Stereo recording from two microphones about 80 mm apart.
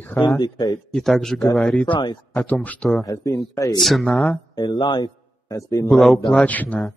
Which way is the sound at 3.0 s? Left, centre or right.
Left.